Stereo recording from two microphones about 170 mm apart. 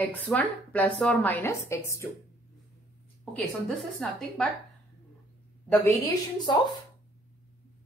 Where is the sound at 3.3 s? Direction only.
5° left (ahead or behind).